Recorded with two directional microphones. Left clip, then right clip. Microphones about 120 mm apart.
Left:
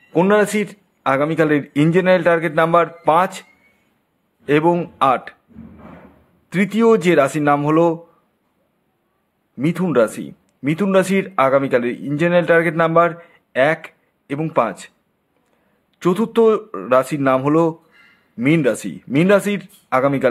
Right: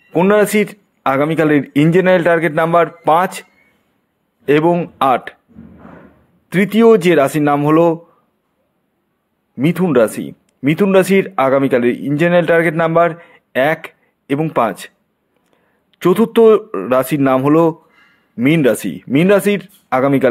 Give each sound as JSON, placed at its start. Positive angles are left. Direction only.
{"t": 0.1, "sound": "a man's voice", "side_deg": -30}
{"t": 4.5, "sound": "a man's voice", "side_deg": -30}
{"t": 6.5, "sound": "a man's voice", "side_deg": -30}
{"t": 9.6, "sound": "a man's voice", "side_deg": -30}
{"t": 16.0, "sound": "a man's voice", "side_deg": -35}